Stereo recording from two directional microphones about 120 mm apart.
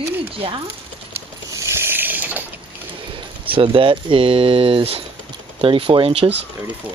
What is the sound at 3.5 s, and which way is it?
Speech, 45° right (ahead or behind).